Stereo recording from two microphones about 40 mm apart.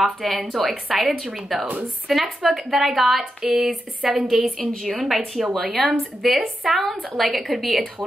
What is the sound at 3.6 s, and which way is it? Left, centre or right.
Speech, right.